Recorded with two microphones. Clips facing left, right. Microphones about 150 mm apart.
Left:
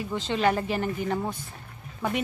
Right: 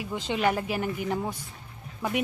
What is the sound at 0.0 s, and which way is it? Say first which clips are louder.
A woman's voice: left 2 dB; 10° right (ahead or behind).